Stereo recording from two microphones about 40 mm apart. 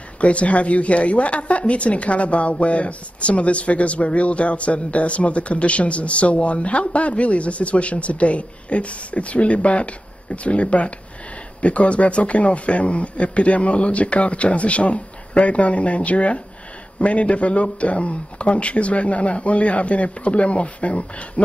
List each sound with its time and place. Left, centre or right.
0.2 s a woman's voice: left